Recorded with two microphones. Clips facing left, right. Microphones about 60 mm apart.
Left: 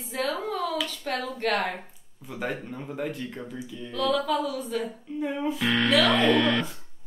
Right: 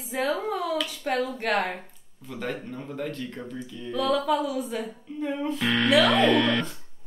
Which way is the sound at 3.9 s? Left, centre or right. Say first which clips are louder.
Right 1 dB; centre.